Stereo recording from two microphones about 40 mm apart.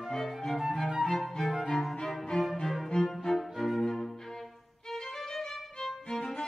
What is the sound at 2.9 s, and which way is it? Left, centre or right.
Music, centre.